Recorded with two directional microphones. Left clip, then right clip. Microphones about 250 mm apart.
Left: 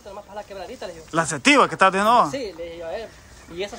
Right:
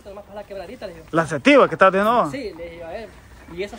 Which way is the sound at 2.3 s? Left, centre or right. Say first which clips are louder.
Left 1 dB; centre.